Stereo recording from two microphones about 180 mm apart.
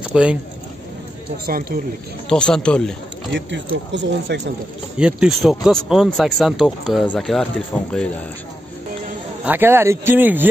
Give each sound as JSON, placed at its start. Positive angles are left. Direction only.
{"t": 0.1, "sound": "speech", "side_deg": -5}
{"t": 1.4, "sound": "speech", "side_deg": -55}
{"t": 2.2, "sound": "speech", "side_deg": 5}
{"t": 3.3, "sound": "speech", "side_deg": -90}
{"t": 4.9, "sound": "speech", "side_deg": -5}
{"t": 9.4, "sound": "speech", "side_deg": -10}